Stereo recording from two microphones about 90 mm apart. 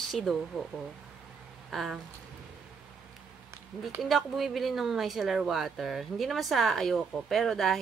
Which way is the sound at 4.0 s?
Centre (ahead or behind).